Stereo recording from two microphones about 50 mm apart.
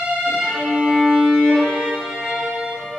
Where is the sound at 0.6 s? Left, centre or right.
Centre.